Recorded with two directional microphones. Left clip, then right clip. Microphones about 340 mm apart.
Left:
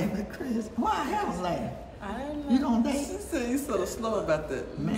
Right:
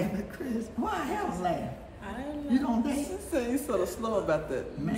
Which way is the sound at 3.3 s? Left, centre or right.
Centre.